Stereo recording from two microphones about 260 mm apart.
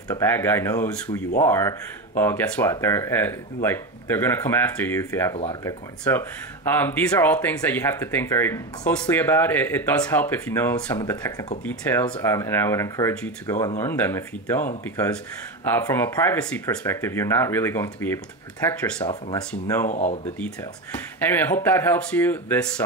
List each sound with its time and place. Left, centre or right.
0.1 s speech: centre
5.3 s speech: centre
6.1 s speech: centre
19.9 s speech: left
21.3 s speech: centre